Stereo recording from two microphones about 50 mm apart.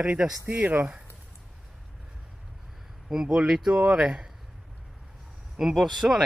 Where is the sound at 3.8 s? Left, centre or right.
Right.